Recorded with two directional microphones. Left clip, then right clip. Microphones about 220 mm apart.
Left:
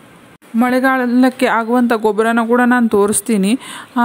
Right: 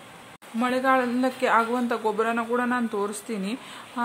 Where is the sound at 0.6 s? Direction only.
40° left (ahead or behind).